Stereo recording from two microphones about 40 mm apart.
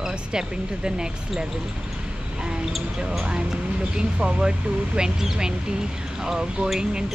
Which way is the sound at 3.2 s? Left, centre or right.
Right.